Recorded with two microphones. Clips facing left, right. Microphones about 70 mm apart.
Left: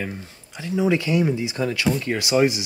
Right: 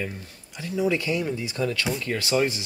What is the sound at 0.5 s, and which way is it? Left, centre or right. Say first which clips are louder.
Speech: left 4 dB; left.